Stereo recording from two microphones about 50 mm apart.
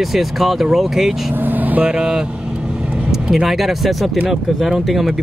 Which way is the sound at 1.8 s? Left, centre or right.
Centre.